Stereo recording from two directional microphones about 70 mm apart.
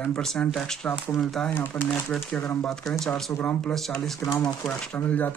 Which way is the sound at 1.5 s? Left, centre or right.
Left.